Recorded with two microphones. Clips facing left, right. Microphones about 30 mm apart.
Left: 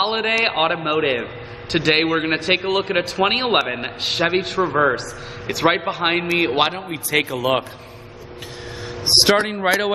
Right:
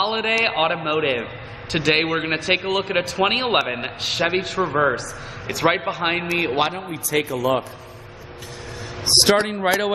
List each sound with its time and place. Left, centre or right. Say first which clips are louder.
0.2 s a man's voice: left 1 dB; centre
2.0 s a man's voice: left 2 dB; centre
4.6 s a man's voice: left 2 dB; centre
5.5 s a man's voice: left 2 dB; centre
6.9 s a man's voice: left 2 dB; left
9.0 s a man's voice: left 1 dB; centre